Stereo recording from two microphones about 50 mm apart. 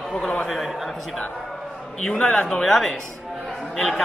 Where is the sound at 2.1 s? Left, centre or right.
Left.